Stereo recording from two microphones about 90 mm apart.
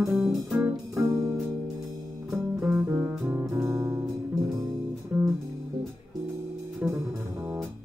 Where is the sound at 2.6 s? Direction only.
25° right (ahead or behind).